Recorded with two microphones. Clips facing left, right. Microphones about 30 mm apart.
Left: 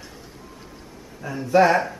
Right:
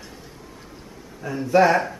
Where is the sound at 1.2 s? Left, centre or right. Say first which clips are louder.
Even; centre.